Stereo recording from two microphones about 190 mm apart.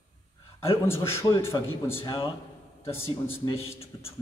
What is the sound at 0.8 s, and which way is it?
A man's voice, 15° left (ahead or behind).